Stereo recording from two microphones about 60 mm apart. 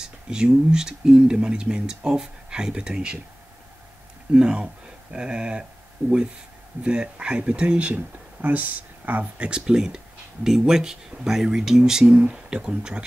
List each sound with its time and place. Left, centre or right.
0.0 s speech: centre
4.3 s speech: centre